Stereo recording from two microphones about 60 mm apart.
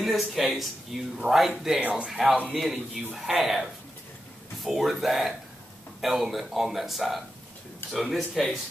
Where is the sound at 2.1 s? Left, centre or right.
Centre.